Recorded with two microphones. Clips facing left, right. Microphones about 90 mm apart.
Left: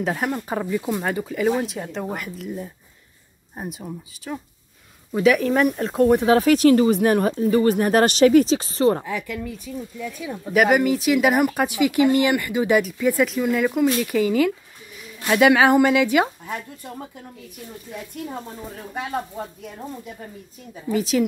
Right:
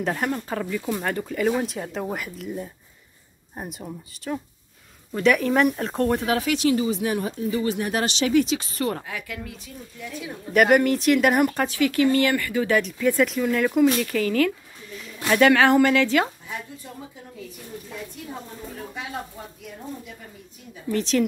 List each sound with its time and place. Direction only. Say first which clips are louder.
0.0 s speech: left 1 dB; 5° left (ahead or behind)
0.5 s a woman's voice: left 3 dB; 15° left (ahead or behind)
0.9 s speech: left 2 dB; 5° left (ahead or behind)
6.2 s speech: left 7 dB; 40° left (ahead or behind); by 7.3 s 55° left (ahead or behind)
7.3 s speech: left 7 dB; 45° left (ahead or behind); by 9.0 s 30° left (ahead or behind)
10.5 s speech: even; 5° left (ahead or behind)
11.6 s a woman's voice: left 2 dB; 15° left (ahead or behind)
12.8 s speech: left 1 dB; 5° left (ahead or behind)
14.1 s a woman's voice: left 3 dB; 15° left (ahead or behind)
20.9 s a woman's voice: left 2 dB; 5° left (ahead or behind)